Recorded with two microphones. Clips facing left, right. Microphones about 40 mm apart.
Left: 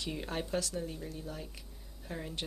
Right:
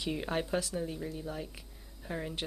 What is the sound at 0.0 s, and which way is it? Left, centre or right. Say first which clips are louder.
Speech: right 4 dB; centre.